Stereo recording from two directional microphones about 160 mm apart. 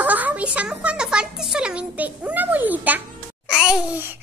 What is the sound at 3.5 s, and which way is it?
Babbling, 5° right (ahead or behind).